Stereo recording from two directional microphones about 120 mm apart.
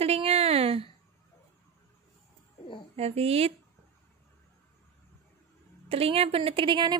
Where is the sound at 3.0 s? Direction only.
55° right (ahead or behind).